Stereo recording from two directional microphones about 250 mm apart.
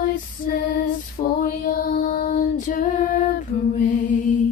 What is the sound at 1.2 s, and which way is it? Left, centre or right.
Female singing, left.